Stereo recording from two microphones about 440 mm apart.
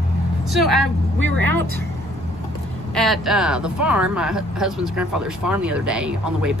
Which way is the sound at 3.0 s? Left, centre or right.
Centre.